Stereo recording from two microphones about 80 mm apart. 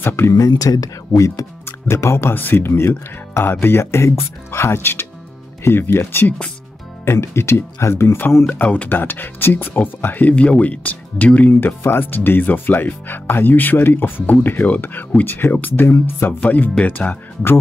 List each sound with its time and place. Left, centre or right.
0.0 s speech: left
0.5 s speech: left
1.9 s speech: left
8.5 s speech: centre